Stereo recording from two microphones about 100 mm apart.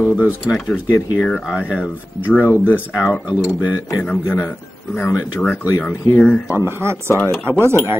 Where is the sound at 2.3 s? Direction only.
20° left (ahead or behind).